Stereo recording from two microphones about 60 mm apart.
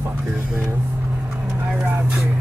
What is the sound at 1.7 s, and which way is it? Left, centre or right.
Vehicle, right.